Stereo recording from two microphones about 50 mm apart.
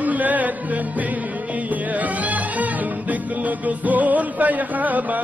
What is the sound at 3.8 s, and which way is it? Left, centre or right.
Music, right.